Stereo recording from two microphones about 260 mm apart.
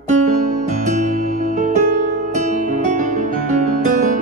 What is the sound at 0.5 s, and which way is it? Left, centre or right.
Music, right.